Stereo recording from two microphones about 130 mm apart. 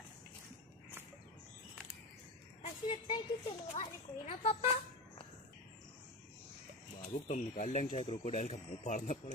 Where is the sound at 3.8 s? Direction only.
65° left (ahead or behind).